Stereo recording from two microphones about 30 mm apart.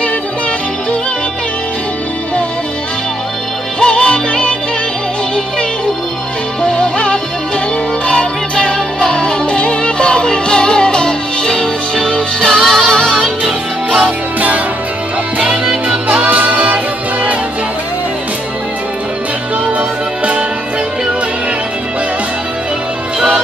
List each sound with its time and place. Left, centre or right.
3.8 s music: left
6.6 s music: left; by 13.0 s centre
15.6 s music: right
16.3 s music: right